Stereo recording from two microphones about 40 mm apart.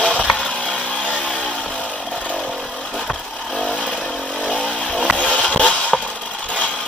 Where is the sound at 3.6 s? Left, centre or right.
Left.